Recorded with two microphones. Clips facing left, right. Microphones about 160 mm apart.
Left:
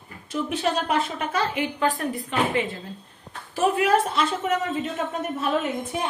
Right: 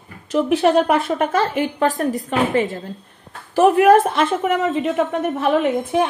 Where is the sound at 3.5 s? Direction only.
55° right (ahead or behind).